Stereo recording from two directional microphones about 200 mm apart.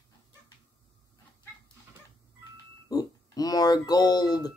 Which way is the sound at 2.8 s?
20° left (ahead or behind).